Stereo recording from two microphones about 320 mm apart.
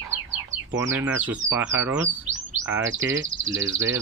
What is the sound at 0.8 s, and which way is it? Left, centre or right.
Speech, centre.